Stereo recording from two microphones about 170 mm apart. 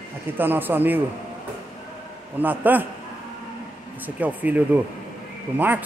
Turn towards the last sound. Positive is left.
turn(degrees=-10)  # may be behind; listen again after turning